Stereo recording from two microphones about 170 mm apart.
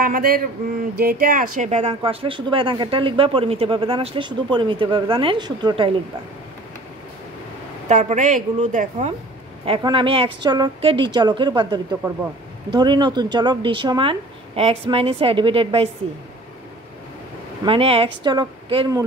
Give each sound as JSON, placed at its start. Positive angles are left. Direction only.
{"t": 0.0, "sound": "a man's voice", "side_deg": -60}
{"t": 7.9, "sound": "a woman's voice", "side_deg": -45}
{"t": 9.7, "sound": "speech", "side_deg": -30}
{"t": 17.6, "sound": "speech", "side_deg": -35}